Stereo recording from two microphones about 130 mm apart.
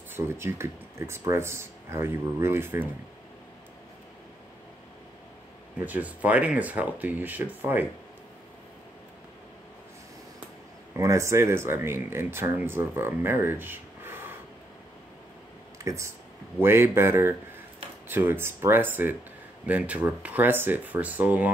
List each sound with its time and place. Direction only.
0.1 s speech: 20° right (ahead or behind)
5.9 s speech: 10° right (ahead or behind)
11.0 s speech: 25° right (ahead or behind)
15.8 s speech: 25° right (ahead or behind)